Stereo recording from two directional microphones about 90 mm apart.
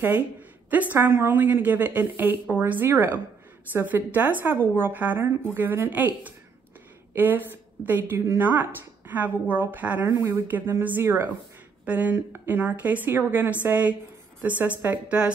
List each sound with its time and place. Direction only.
0.7 s a woman's voice: 20° right (ahead or behind)